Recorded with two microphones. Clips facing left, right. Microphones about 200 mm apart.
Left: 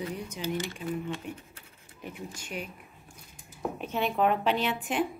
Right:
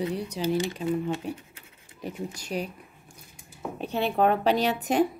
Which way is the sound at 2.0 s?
40° right (ahead or behind).